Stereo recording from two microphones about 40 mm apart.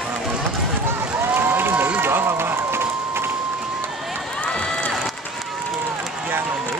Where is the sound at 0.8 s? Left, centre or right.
Right.